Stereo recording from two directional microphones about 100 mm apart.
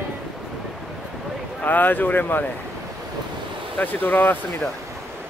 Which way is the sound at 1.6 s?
15° left (ahead or behind).